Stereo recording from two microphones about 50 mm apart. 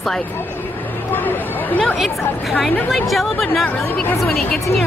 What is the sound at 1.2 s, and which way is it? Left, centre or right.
Chatter, left.